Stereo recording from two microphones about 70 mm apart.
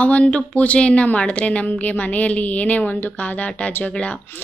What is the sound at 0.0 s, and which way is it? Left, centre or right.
A woman's voice, centre.